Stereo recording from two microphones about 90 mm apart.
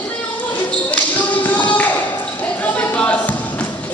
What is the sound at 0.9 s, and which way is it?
Tap, 15° left (ahead or behind).